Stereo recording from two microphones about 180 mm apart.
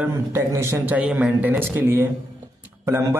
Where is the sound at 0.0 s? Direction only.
15° right (ahead or behind).